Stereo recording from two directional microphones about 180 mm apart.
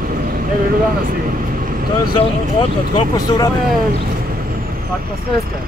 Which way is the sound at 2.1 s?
25° left (ahead or behind).